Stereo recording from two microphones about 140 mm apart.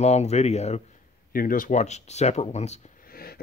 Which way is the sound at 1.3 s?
90° left.